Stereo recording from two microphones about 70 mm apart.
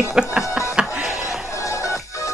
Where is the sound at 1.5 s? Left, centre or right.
Left.